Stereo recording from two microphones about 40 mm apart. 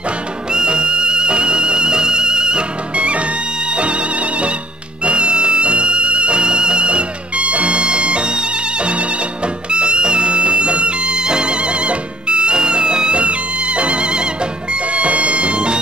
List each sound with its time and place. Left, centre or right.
0.5 s music: right